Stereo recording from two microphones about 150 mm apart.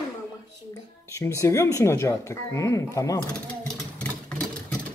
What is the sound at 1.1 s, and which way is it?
Speech, 20° left (ahead or behind).